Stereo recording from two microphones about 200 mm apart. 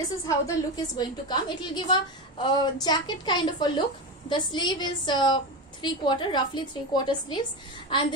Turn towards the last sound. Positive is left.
turn(degrees=20)  # may be behind; listen again after turning